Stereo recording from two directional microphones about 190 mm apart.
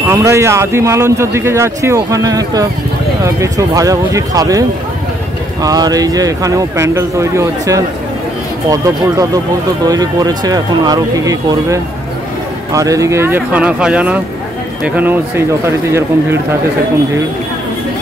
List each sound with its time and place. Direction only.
0.0 s a man's voice: 15° right (ahead or behind)